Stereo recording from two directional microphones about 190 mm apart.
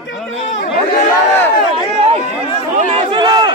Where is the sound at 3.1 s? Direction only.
25° right (ahead or behind).